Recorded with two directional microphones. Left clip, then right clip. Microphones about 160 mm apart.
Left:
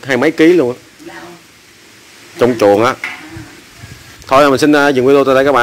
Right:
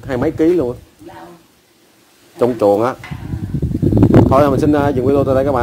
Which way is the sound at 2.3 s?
5° right (ahead or behind).